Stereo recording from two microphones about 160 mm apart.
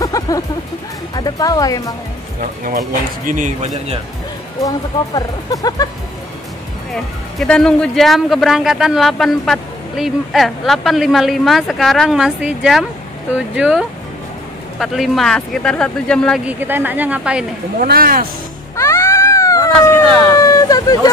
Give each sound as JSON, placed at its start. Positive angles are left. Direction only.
{"t": 0.0, "sound": "music", "side_deg": 20}
{"t": 1.1, "sound": "speech", "side_deg": 25}
{"t": 3.3, "sound": "speech", "side_deg": -50}
{"t": 4.6, "sound": "speech", "side_deg": 20}
{"t": 6.9, "sound": "speech", "side_deg": 5}
{"t": 16.4, "sound": "a woman's voice", "side_deg": -10}
{"t": 17.7, "sound": "speech", "side_deg": -65}
{"t": 18.8, "sound": "cat", "side_deg": 15}
{"t": 20.2, "sound": "hubbub", "side_deg": 20}